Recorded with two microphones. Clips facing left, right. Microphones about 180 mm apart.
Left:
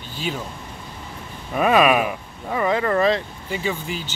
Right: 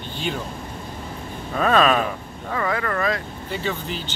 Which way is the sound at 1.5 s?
10° left (ahead or behind).